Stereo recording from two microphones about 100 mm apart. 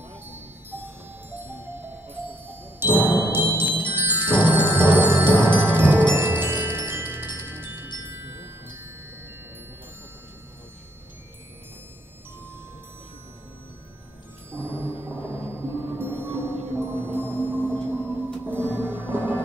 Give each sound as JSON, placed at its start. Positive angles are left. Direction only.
{"t": 0.1, "sound": "music", "side_deg": -20}
{"t": 3.4, "sound": "tubular bells", "side_deg": -20}
{"t": 3.9, "sound": "mallet percussion", "side_deg": -20}
{"t": 8.0, "sound": "glockenspiel", "side_deg": -20}
{"t": 14.5, "sound": "music", "side_deg": -25}
{"t": 17.7, "sound": "gong", "side_deg": 10}
{"t": 18.4, "sound": "music", "side_deg": -20}